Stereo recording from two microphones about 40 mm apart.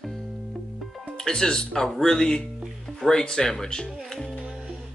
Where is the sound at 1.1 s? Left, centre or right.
Centre.